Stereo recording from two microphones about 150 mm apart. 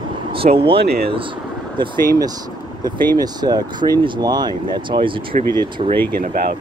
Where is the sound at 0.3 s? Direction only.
40° right (ahead or behind).